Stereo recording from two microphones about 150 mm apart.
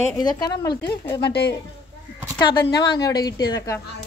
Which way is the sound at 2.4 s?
30° left (ahead or behind).